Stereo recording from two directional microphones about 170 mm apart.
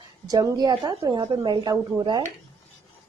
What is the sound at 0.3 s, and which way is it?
A woman's voice, 20° right (ahead or behind).